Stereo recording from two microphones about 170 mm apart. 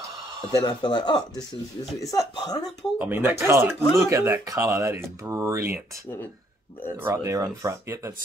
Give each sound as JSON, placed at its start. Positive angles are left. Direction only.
{"t": 0.4, "sound": "speech", "side_deg": 25}
{"t": 3.0, "sound": "speech", "side_deg": -10}
{"t": 7.0, "sound": "speech", "side_deg": -15}